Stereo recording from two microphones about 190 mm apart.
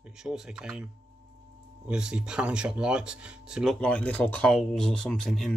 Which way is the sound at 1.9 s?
5° right (ahead or behind).